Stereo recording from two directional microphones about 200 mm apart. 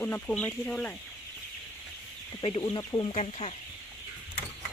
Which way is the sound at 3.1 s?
30° left (ahead or behind).